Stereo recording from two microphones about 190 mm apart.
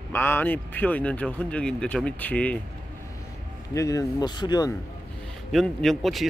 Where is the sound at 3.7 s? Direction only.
15° left (ahead or behind).